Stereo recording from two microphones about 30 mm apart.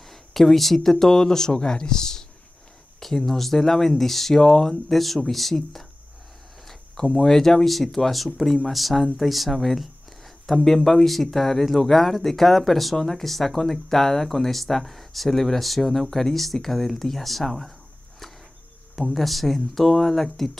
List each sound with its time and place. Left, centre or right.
0.0 s speech: centre
3.0 s speech: centre
4.9 s speech: centre
7.1 s speech: centre
19.1 s speech: centre